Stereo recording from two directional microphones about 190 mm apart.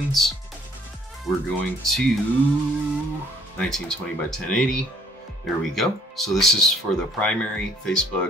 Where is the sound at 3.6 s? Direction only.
5° left (ahead or behind).